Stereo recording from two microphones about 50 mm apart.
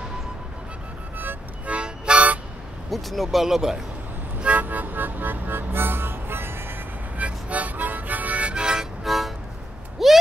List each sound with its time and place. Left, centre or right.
1.7 s music: right
2.9 s speech: centre
4.4 s speech: right
7.2 s music: right
9.0 s music: centre
10.0 s a sound: centre